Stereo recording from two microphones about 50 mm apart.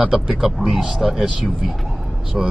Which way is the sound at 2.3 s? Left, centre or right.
Centre.